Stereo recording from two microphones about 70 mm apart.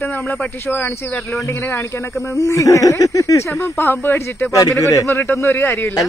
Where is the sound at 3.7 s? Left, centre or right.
Left.